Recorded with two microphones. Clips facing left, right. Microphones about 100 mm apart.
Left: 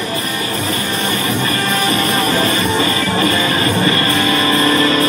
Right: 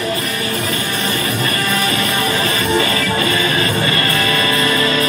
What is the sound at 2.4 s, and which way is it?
Music, 30° left (ahead or behind).